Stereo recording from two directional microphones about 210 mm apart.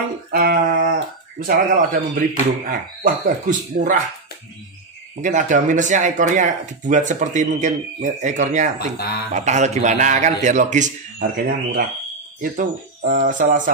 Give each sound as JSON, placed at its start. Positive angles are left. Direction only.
{"t": 0.3, "sound": "music", "side_deg": -45}
{"t": 1.4, "sound": "speech", "side_deg": -40}
{"t": 5.2, "sound": "speech", "side_deg": -35}
{"t": 8.7, "sound": "speech", "side_deg": 50}
{"t": 9.3, "sound": "speech", "side_deg": -35}